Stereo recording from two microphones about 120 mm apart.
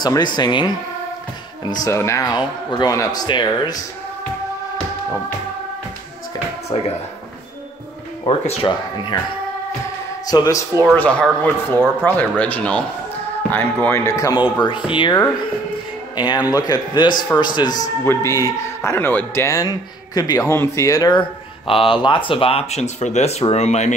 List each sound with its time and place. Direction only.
0.0 s speech: 35° left (ahead or behind)
1.8 s speech: 25° left (ahead or behind)
6.7 s speech: 40° left (ahead or behind)
8.6 s speech: 35° left (ahead or behind)
10.2 s speech: 30° left (ahead or behind)
11.0 s speech: 10° left (ahead or behind); by 14.4 s 30° left (ahead or behind)
14.9 s speech: 45° left (ahead or behind)
16.2 s speech: 35° left (ahead or behind)
18.0 s speech: 25° left (ahead or behind)
21.6 s speech: 50° left (ahead or behind); by 23.9 s 65° left (ahead or behind)